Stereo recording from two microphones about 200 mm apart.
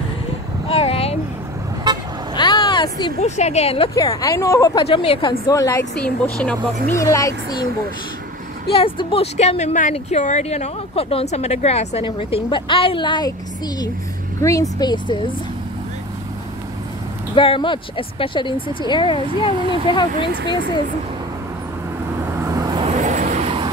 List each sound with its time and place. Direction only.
0.7 s a sound: 30° left (ahead or behind)
2.3 s vehicle: 20° left (ahead or behind)
3.2 s speech: 35° left (ahead or behind)
3.9 s speech: 15° left (ahead or behind)
4.8 s speech: 30° left (ahead or behind)
5.5 s speech: 15° left (ahead or behind)
5.9 s a woman's voice: 5° left (ahead or behind)
8.8 s speech: 30° left (ahead or behind)
14.4 s speech: 15° left (ahead or behind)
17.4 s speech: 25° left (ahead or behind)
19.5 s speech: 25° right (ahead or behind)
19.9 s speech: 25° left (ahead or behind)
22.4 s vehicle: 15° right (ahead or behind)
23.0 s vehicle: 35° right (ahead or behind)